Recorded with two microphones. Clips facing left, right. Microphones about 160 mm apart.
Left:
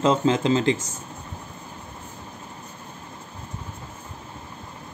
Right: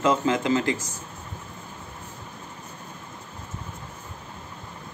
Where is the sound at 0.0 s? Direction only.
30° left (ahead or behind).